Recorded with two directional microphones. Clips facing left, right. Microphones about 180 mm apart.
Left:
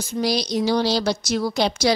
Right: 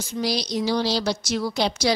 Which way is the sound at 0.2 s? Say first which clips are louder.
Left 3 dB; 50° left (ahead or behind).